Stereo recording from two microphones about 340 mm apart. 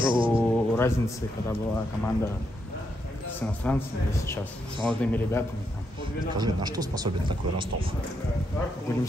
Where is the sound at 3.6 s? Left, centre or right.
Centre.